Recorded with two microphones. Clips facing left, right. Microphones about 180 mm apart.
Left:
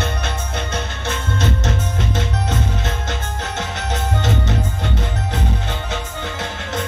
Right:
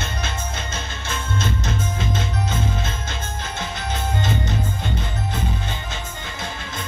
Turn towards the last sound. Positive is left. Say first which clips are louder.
# left 6 dB
turn(degrees=70)  # may be behind; listen again after turning